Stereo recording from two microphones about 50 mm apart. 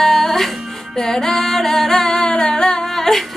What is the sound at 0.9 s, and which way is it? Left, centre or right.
Singing, centre.